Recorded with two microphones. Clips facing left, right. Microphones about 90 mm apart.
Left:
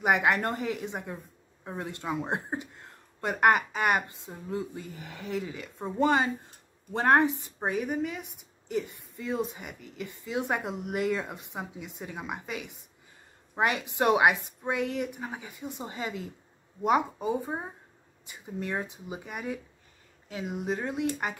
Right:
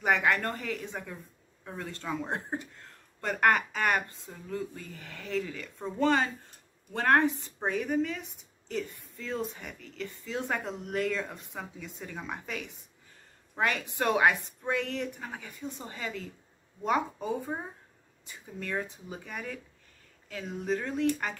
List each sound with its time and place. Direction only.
0.0 s a woman's voice: 15° left (ahead or behind)